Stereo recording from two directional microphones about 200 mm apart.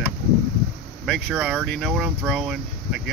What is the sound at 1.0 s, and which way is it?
Speech, 5° right (ahead or behind).